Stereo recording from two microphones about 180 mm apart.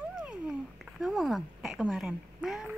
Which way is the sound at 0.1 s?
5° right (ahead or behind).